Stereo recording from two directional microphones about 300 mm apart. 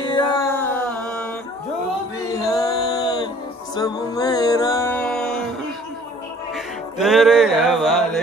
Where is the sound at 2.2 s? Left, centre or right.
Centre.